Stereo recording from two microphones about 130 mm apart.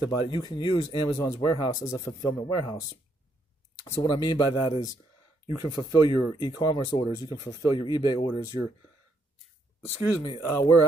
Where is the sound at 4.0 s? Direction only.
35° left (ahead or behind).